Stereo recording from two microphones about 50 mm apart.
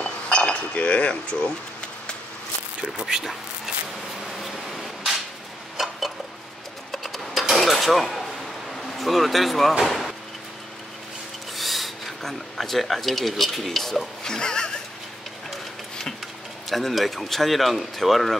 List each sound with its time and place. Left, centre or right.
0.0 s cutlery: centre
2.8 s speech: centre
4.3 s a sound: centre
8.7 s speech: centre
11.5 s speech: centre
16.6 s speech: centre